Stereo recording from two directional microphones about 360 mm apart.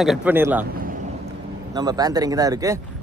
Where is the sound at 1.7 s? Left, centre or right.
Centre.